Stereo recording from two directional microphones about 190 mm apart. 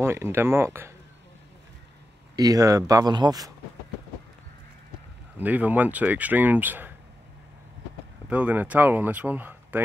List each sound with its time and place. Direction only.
0.0 s speech: 15° right (ahead or behind)
2.3 s speech: 20° right (ahead or behind)
5.4 s speech: 10° right (ahead or behind)
8.3 s speech: 10° right (ahead or behind)